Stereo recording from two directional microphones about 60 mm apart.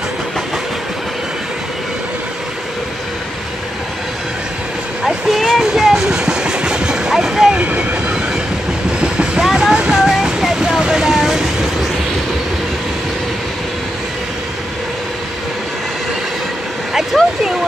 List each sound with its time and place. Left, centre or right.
5.0 s vehicle: centre
7.5 s train: right
9.0 s vehicle: centre
16.9 s vehicle: centre